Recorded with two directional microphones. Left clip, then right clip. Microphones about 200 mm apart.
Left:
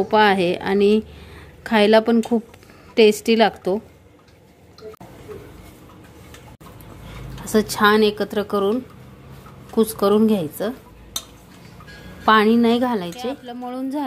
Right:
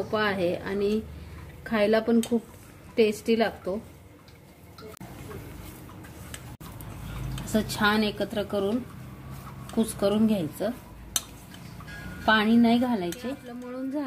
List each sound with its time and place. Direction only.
0.1 s speech: 50° left (ahead or behind)
7.5 s a woman's voice: 35° left (ahead or behind)
9.8 s a woman's voice: 35° left (ahead or behind)
12.3 s a woman's voice: 35° left (ahead or behind)